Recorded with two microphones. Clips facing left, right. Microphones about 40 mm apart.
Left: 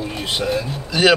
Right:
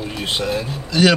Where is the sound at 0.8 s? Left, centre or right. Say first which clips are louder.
Even; centre.